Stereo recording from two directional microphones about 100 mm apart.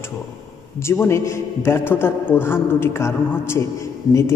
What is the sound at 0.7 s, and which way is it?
A man's voice, 25° left (ahead or behind).